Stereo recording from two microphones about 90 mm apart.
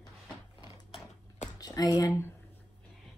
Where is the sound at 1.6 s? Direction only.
40° left (ahead or behind).